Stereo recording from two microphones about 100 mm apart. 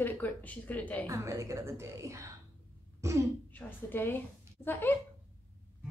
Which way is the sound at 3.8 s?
20° left (ahead or behind).